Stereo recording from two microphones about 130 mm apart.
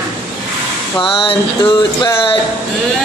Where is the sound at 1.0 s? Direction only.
45° left (ahead or behind).